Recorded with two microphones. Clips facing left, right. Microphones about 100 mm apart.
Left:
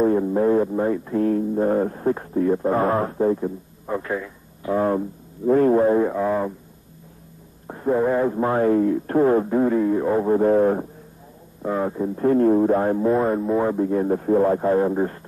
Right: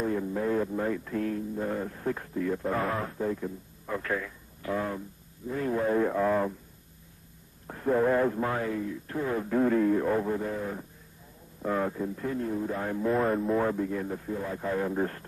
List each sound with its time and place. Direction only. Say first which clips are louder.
0.0 s speech: left 11 dB; 35° left (ahead or behind)
1.3 s speech: left 11 dB; 40° left (ahead or behind); by 4.7 s 20° left (ahead or behind)
4.7 s speech: left 13 dB; 45° left (ahead or behind)
5.9 s music: left 5 dB; 15° left (ahead or behind)
7.6 s speech: left 5 dB; 20° left (ahead or behind)
8.4 s speech: left 9 dB; 30° left (ahead or behind)
8.6 s speech: left 14 dB; 50° left (ahead or behind)
9.5 s speech: left 5 dB; 15° left (ahead or behind)
10.2 s speech: left 14 dB; 45° left (ahead or behind)
11.6 s speech: left 6 dB; 20° left (ahead or behind)
12.2 s speech: left 18 dB; 50° left (ahead or behind); by 13.3 s 35° left (ahead or behind)
13.4 s speech: left 6 dB; 20° left (ahead or behind)
13.8 s speech: left 12 dB; 40° left (ahead or behind)
15.0 s music: left 6 dB; 15° left (ahead or behind)